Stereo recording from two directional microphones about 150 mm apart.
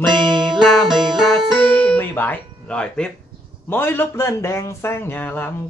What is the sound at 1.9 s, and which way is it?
A man's voice, 15° left (ahead or behind).